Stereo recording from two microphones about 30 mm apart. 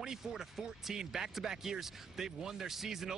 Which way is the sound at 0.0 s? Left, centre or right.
Centre.